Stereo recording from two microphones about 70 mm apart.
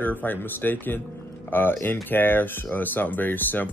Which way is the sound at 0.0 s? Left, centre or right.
Left.